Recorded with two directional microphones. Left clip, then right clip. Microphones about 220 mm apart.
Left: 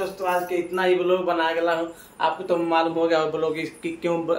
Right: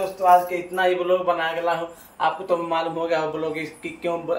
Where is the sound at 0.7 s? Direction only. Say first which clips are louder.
Right 1 dB; 10° left (ahead or behind).